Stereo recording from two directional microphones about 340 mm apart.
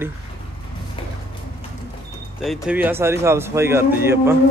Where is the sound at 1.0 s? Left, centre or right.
Centre.